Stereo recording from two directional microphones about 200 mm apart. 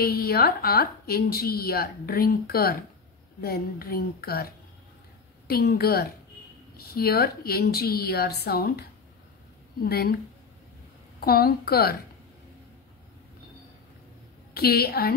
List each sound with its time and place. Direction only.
0.0 s a woman's voice: 50° left (ahead or behind)
5.5 s a woman's voice: 50° left (ahead or behind)
11.1 s a woman's voice: 50° left (ahead or behind)
14.5 s a woman's voice: 50° left (ahead or behind)